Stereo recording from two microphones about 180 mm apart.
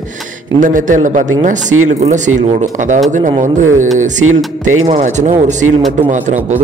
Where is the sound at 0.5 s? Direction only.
45° right (ahead or behind).